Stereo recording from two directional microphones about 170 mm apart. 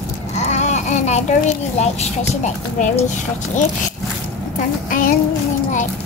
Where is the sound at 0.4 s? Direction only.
40° left (ahead or behind).